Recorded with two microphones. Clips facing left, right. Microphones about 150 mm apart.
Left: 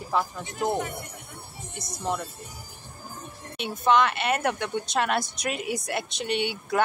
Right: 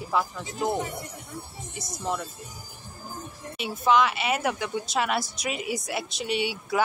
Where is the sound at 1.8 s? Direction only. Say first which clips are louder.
Left 1 dB; centre (ahead or behind).